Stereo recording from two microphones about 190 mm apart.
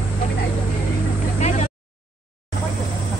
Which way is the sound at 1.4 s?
35° left (ahead or behind).